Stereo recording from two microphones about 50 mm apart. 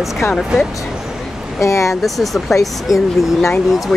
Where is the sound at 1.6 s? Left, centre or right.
Left.